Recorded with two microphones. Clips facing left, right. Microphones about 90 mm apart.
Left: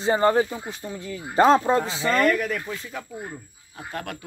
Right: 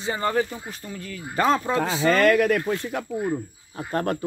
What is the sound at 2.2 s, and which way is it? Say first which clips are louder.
Speech: right 3 dB; 90° right.